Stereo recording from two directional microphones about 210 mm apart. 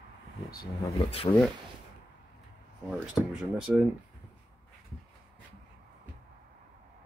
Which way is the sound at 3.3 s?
Centre (ahead or behind).